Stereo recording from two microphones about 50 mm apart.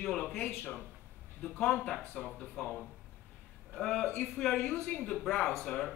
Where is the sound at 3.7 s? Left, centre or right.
Centre.